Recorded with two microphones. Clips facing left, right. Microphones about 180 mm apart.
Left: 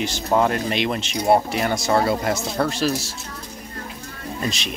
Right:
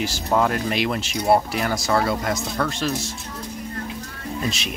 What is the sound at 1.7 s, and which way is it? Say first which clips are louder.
Speech: left 2 dB; 25° left (ahead or behind).